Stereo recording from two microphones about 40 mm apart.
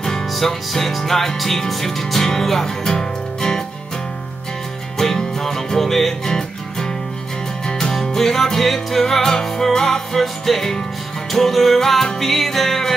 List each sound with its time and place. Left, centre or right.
0.3 s music: centre
4.9 s music: centre
7.9 s music: centre